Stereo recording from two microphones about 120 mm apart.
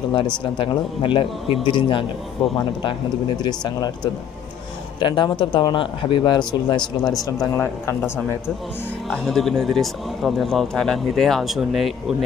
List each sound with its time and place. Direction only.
0.1 s speech: 45° left (ahead or behind)
7.5 s speech: 15° left (ahead or behind)
9.1 s speech: centre (ahead or behind)